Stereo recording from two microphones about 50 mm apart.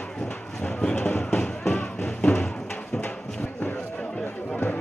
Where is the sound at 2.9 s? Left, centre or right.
Centre.